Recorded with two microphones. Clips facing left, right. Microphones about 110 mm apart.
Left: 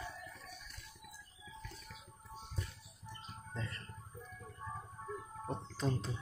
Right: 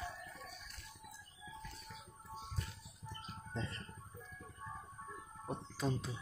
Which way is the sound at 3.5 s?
25° right (ahead or behind).